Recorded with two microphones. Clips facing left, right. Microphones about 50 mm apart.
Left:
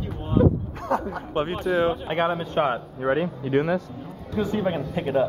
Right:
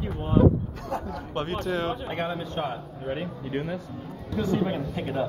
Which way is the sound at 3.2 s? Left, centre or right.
Left.